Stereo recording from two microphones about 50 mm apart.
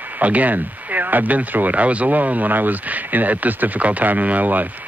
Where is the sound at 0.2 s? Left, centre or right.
Right.